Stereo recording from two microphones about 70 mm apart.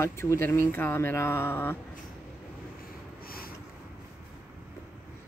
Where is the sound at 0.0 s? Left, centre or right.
Left.